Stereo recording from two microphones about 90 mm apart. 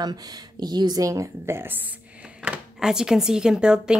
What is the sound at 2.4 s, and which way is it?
Speech, 5° right (ahead or behind).